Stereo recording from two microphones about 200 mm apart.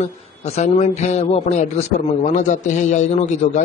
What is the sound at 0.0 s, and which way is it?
A man's voice, 35° left (ahead or behind).